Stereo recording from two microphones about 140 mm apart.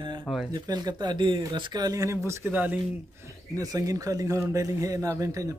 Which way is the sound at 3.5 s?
25° right (ahead or behind).